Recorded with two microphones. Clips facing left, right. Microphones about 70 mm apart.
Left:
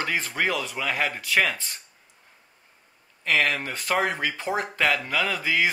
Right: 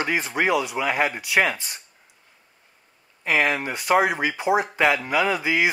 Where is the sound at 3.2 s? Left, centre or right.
Centre.